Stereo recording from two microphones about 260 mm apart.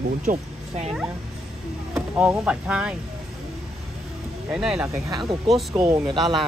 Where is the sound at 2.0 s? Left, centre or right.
Centre.